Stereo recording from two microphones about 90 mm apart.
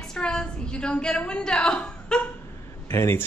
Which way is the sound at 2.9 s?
30° left (ahead or behind).